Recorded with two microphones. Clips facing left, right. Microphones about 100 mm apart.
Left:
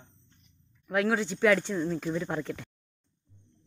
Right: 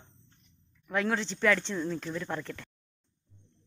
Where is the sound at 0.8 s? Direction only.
10° left (ahead or behind).